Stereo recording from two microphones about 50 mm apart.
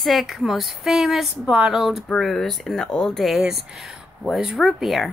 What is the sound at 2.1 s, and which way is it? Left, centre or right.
Speech, centre.